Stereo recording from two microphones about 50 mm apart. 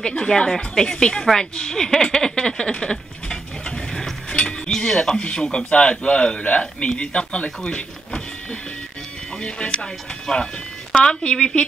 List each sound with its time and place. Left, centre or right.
0.0 s a woman's voice: centre
2.2 s a sound: centre
4.3 s cutlery: left
4.6 s a woman's voice: centre
9.4 s a man's voice: centre